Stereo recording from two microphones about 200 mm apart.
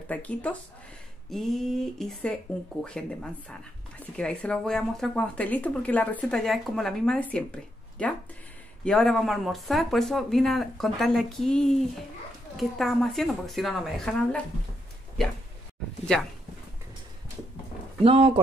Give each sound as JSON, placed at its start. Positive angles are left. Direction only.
{"t": 0.1, "sound": "speech", "side_deg": 5}
{"t": 18.0, "sound": "speech", "side_deg": -30}